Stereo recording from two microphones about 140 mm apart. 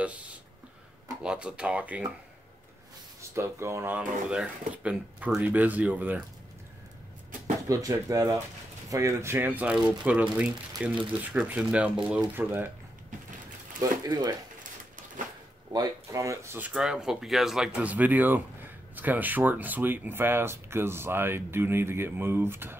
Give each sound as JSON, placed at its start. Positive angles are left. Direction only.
{"t": 0.0, "sound": "speech", "side_deg": -10}
{"t": 3.2, "sound": "speech", "side_deg": -20}
{"t": 7.6, "sound": "speech", "side_deg": -25}
{"t": 13.7, "sound": "speech", "side_deg": -30}
{"t": 14.6, "sound": "a sound", "side_deg": -70}
{"t": 15.7, "sound": "speech", "side_deg": -25}